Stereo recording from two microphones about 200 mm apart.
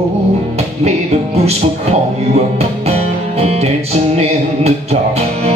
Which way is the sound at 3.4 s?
30° right (ahead or behind).